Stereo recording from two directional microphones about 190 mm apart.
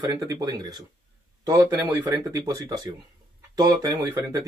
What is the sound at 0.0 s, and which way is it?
Speech, 20° right (ahead or behind).